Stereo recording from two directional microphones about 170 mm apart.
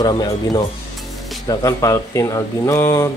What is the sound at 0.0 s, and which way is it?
Speech, 25° left (ahead or behind).